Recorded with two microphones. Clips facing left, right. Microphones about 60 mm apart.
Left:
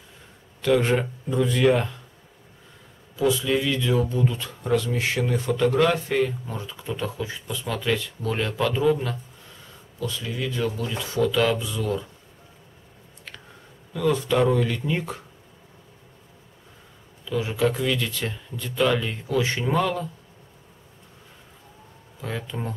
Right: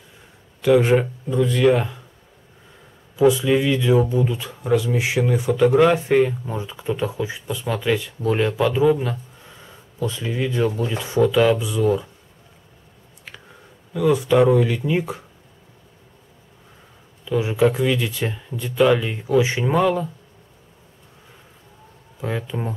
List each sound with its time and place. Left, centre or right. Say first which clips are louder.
0.6 s speech: right 5 dB; centre
3.2 s speech: right 6 dB; centre
9.9 s speech: right 5 dB; right
13.9 s speech: right 5 dB; centre
17.2 s speech: right 5 dB; centre
22.2 s speech: right 5 dB; centre